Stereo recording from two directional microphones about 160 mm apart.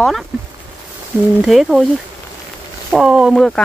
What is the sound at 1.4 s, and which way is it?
Speech, centre (ahead or behind).